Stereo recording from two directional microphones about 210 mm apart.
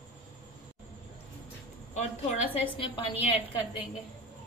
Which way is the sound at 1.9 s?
30° left (ahead or behind).